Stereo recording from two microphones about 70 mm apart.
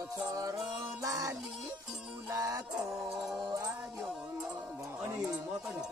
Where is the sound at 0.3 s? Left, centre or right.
Right.